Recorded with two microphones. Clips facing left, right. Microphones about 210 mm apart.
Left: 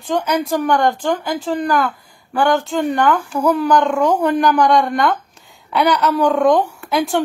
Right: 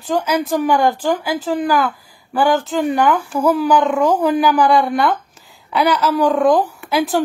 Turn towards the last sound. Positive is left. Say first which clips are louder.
# right 1 dB
turn(degrees=0)  # may be behind; listen again after turning